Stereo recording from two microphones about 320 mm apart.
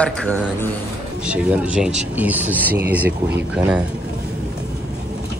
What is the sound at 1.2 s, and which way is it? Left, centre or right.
Speech, centre.